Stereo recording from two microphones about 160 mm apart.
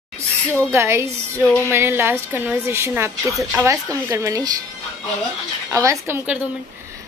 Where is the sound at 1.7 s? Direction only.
15° right (ahead or behind).